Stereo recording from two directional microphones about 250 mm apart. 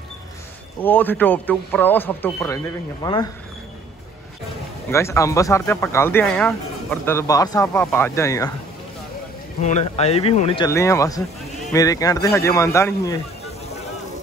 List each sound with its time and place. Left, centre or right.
0.8 s speech: centre
4.9 s speech: centre
9.6 s speech: left; by 13.2 s centre